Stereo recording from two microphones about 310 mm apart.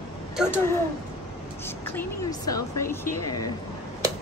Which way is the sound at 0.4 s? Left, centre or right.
Centre.